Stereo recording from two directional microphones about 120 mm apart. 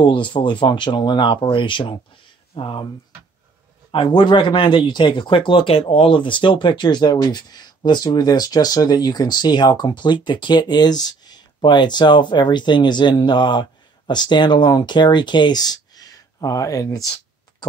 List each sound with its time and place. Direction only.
0.0 s speech: 40° left (ahead or behind)
3.9 s speech: 40° left (ahead or behind)